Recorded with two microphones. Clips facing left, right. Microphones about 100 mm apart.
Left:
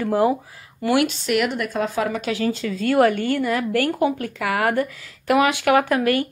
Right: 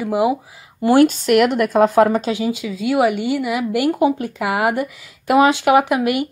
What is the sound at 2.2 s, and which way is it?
Speech, 20° right (ahead or behind).